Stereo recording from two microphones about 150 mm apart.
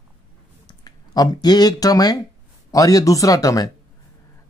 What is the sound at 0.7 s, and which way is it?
Speech, 25° left (ahead or behind).